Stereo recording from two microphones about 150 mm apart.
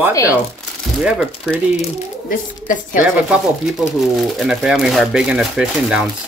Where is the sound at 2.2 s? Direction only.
65° left (ahead or behind).